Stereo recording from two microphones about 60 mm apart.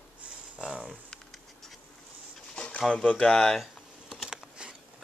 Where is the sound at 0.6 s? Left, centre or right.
Centre.